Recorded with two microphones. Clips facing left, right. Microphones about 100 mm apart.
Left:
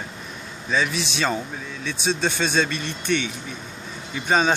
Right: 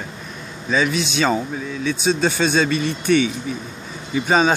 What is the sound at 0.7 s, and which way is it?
A man's voice, centre (ahead or behind).